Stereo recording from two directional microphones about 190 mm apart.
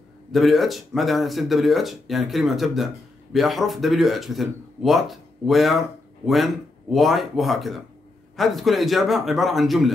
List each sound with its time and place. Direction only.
0.3 s speech: centre (ahead or behind)